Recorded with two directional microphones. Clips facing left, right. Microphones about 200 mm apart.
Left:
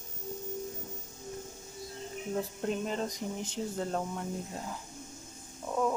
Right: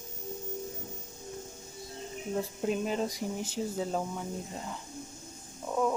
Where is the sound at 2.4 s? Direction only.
5° right (ahead or behind).